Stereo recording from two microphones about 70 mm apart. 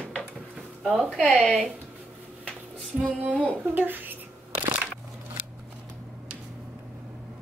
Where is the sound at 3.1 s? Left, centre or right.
Right.